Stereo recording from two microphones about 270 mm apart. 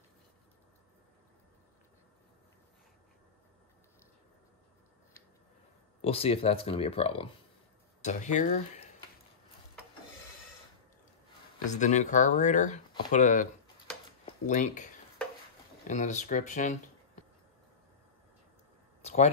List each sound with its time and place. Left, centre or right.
5.9 s speech: left
11.6 s speech: left
15.9 s speech: left
19.0 s speech: left